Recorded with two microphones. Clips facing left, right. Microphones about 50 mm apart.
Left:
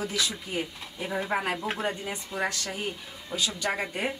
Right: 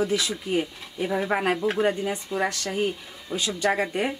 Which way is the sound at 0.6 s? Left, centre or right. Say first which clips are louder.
Right 5 dB; centre.